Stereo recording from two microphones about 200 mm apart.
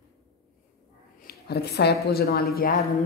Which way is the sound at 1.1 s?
50° left (ahead or behind).